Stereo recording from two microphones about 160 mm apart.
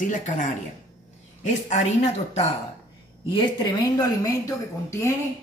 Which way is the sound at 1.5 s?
45° left (ahead or behind).